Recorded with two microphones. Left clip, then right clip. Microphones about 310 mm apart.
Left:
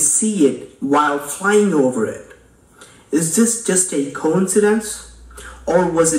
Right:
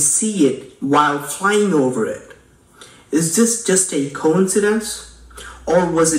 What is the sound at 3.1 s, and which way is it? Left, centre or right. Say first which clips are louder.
Speech: right 1 dB; centre.